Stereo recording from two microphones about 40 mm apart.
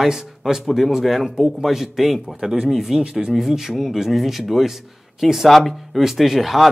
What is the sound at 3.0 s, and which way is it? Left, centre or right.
Speech, right.